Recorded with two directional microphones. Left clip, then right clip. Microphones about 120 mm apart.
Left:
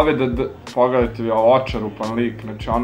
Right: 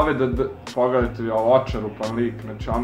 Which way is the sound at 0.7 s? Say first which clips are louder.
Left 4 dB; 35° left (ahead or behind).